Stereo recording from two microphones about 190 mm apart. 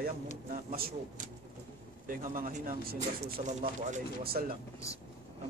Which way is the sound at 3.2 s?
40° right (ahead or behind).